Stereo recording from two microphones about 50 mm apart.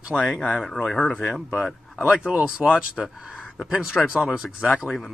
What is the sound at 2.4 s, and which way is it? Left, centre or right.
Speech, right.